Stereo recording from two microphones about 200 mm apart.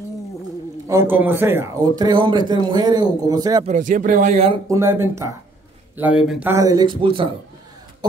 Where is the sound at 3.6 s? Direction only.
40° right (ahead or behind).